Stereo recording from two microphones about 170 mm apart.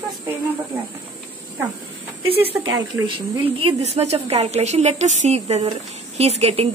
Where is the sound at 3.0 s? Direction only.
30° right (ahead or behind).